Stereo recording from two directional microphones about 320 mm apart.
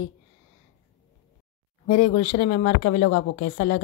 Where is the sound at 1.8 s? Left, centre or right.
Left.